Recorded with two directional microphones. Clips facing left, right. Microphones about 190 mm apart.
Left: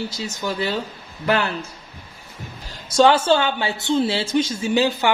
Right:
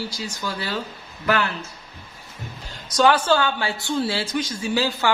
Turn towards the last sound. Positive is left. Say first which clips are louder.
# left 4 dB
turn(degrees=20)  # may be behind; listen again after turning